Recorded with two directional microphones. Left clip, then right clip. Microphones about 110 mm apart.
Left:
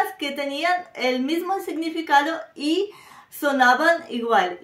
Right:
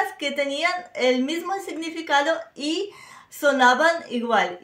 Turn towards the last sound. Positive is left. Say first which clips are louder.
# left 1 dB
turn(degrees=-15)  # may be behind; listen again after turning